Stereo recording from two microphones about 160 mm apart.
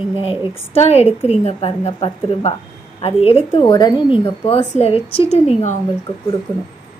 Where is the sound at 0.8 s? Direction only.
40° left (ahead or behind).